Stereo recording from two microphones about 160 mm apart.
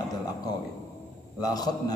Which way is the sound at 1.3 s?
25° left (ahead or behind).